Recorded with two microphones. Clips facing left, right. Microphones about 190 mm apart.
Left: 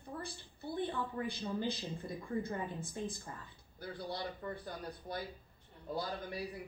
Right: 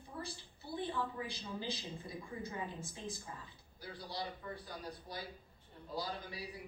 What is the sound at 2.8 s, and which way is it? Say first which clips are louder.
A woman's voice: left 4 dB; 55° left (ahead or behind).